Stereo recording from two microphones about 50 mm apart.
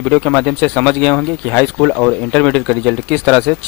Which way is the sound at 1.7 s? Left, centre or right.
Centre.